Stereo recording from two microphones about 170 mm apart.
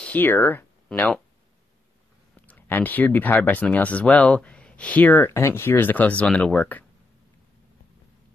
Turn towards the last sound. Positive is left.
turn(degrees=10)  # may be behind; listen again after turning